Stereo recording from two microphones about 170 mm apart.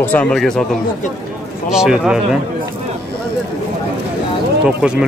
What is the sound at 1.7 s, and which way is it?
Speech, 5° right (ahead or behind).